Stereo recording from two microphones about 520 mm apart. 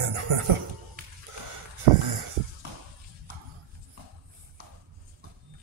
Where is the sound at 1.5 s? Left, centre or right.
Right.